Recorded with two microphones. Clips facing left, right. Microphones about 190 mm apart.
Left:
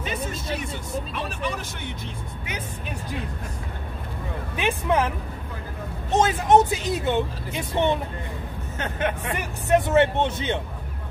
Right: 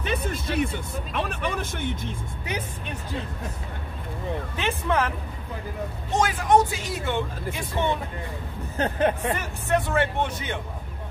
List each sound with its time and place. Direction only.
0.0 s speech: 60° right (ahead or behind)
4.6 s speech: 15° left (ahead or behind)
6.1 s speech: 25° left (ahead or behind)
8.7 s speech: 35° right (ahead or behind)
9.4 s speech: 20° left (ahead or behind)